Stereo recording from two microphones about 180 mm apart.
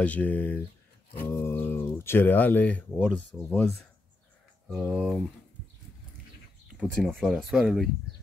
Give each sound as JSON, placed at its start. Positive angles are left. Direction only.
{"t": 0.0, "sound": "speech", "side_deg": 10}
{"t": 6.8, "sound": "speech", "side_deg": 5}